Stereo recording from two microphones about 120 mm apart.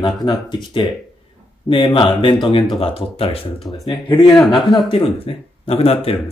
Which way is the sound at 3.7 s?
25° left (ahead or behind).